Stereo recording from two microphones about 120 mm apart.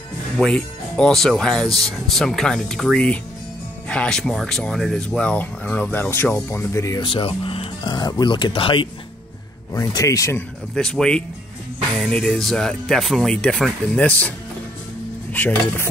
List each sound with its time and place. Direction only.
0.4 s speech: 5° left (ahead or behind); by 7.0 s 25° left (ahead or behind)
7.0 s speech: 45° left (ahead or behind)
7.9 s speech: 35° left (ahead or behind)
9.7 s speech: 25° left (ahead or behind)
10.7 s speech: 5° left (ahead or behind)
15.3 s speech: 15° left (ahead or behind)